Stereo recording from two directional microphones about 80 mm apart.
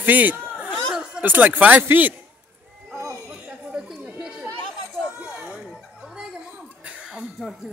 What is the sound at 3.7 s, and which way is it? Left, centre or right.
Chatter, centre.